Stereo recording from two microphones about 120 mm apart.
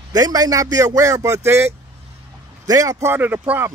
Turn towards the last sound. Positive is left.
turn(degrees=-15)  # may be behind; listen again after turning